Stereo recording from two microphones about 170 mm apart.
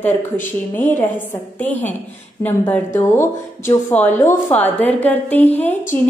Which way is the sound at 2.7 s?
15° left (ahead or behind).